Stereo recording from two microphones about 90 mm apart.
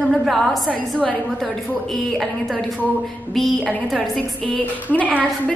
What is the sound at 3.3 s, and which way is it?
Speech, centre (ahead or behind).